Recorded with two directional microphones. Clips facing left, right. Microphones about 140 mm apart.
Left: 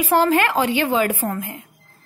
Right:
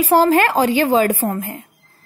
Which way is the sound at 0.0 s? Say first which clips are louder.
Right 4 dB; 35° right (ahead or behind).